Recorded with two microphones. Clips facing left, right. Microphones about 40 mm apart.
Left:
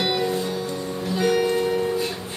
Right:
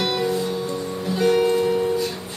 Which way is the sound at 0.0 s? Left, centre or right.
Centre.